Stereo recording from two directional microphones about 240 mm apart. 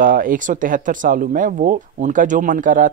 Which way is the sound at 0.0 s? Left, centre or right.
Right.